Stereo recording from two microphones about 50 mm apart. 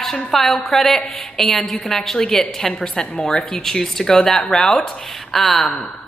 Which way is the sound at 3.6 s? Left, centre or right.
Centre.